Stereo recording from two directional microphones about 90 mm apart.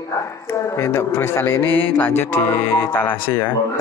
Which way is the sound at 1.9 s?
20° left (ahead or behind).